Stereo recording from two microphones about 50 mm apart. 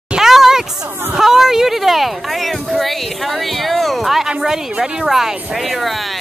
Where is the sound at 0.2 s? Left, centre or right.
Centre.